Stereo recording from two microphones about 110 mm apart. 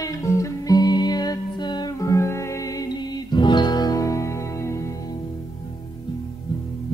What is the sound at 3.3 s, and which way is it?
Music, 40° left (ahead or behind).